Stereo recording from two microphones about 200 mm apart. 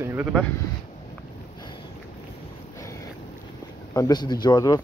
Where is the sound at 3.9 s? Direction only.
20° left (ahead or behind).